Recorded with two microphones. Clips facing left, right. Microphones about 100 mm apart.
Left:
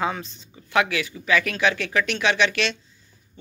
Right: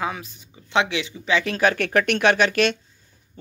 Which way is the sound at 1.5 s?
45° right (ahead or behind).